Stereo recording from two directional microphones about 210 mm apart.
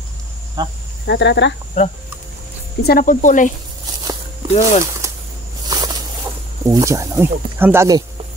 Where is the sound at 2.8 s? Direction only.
45° left (ahead or behind).